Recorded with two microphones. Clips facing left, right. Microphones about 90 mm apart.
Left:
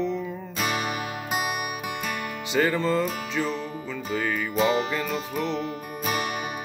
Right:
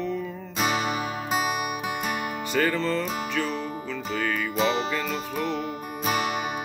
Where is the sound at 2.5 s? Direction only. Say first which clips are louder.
Left 2 dB; 15° left (ahead or behind).